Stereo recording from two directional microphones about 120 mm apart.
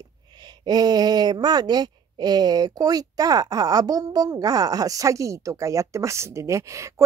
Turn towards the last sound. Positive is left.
turn(degrees=-25)  # may be behind; listen again after turning